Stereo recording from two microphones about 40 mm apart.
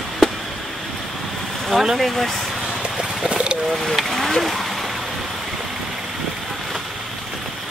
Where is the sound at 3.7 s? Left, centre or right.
Centre.